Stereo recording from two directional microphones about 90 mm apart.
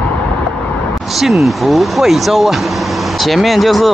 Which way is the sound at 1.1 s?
Centre (ahead or behind).